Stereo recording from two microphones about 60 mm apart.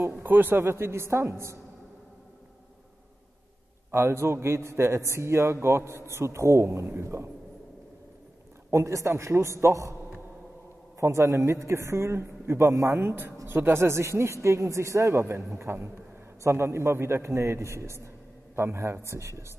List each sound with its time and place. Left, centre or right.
0.1 s a man's voice: right
3.9 s a man's voice: right
8.6 s a man's voice: right
11.0 s a man's voice: right